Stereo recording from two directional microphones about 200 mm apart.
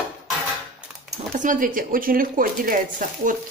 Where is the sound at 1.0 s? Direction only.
40° right (ahead or behind).